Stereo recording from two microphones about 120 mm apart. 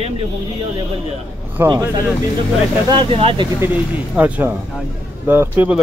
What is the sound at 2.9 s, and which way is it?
Speech, 50° right (ahead or behind).